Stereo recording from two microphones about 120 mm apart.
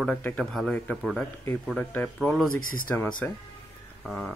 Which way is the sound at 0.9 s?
Centre (ahead or behind).